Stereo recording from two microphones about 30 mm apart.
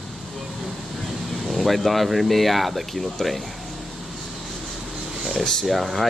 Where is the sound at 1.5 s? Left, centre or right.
Centre.